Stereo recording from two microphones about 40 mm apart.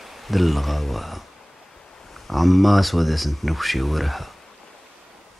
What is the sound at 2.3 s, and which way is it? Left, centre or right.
Speech, centre.